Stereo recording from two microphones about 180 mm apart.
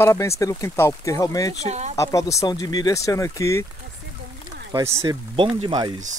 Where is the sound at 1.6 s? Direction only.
40° right (ahead or behind).